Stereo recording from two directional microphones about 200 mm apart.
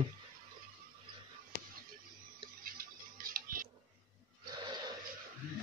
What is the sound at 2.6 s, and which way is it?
Music, 45° right (ahead or behind).